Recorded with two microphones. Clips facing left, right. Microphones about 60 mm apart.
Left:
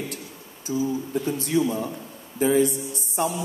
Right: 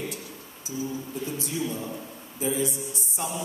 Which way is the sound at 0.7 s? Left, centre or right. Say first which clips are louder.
Left 7 dB; left.